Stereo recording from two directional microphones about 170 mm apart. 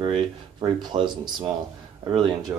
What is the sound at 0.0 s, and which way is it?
Speech, 30° right (ahead or behind).